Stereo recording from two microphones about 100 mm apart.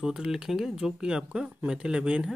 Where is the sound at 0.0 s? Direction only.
5° right (ahead or behind).